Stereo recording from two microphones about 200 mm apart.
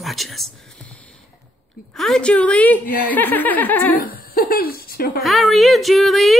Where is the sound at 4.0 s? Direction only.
45° left (ahead or behind).